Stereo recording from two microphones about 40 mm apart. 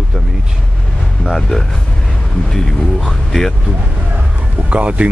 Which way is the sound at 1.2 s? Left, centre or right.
Centre.